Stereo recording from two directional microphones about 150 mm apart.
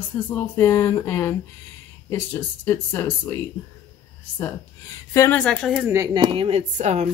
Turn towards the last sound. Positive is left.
turn(degrees=-50)  # may be behind; listen again after turning